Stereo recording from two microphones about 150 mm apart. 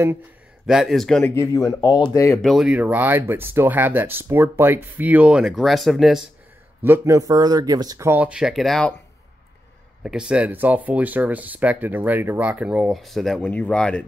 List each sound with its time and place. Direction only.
0.7 s speech: centre (ahead or behind)
1.3 s speech: 20° left (ahead or behind)
2.4 s speech: 5° right (ahead or behind)
6.8 s speech: 20° right (ahead or behind)
8.1 s speech: 10° right (ahead or behind)
10.0 s speech: 5° right (ahead or behind)